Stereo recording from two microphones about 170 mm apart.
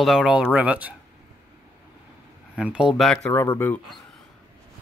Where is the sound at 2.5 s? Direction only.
5° right (ahead or behind).